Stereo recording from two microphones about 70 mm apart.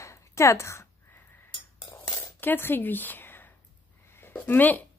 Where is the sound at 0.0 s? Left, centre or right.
Left.